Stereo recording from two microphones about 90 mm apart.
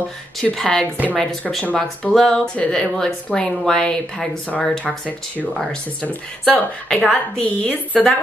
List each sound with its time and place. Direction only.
0.4 s a woman's voice: 5° left (ahead or behind)